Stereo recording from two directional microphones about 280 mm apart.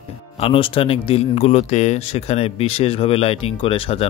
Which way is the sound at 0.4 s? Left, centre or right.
Centre.